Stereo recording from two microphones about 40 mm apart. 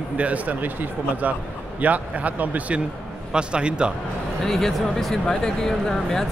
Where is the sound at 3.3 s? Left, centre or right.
Right.